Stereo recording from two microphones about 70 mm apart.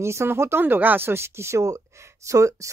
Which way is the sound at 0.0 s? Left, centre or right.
Right.